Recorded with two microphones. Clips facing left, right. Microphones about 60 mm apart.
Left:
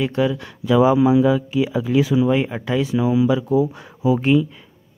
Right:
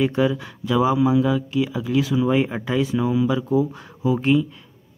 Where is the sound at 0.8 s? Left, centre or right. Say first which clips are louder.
Left 3 dB; centre.